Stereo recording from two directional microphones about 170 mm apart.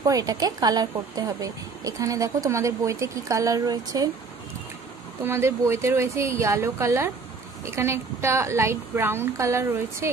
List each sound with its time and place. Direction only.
0.0 s a woman's voice: 20° right (ahead or behind)
5.2 s a woman's voice: 15° right (ahead or behind)